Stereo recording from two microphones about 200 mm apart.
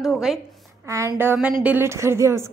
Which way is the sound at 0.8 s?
15° right (ahead or behind).